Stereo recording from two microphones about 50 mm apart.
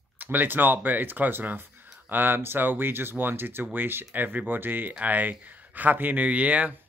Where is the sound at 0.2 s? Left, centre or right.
Right.